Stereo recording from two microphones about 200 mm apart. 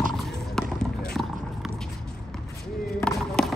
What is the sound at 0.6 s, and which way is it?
Basketball bounce, 5° left (ahead or behind).